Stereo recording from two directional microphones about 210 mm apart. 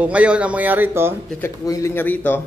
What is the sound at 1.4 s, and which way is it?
A man's voice, 15° left (ahead or behind).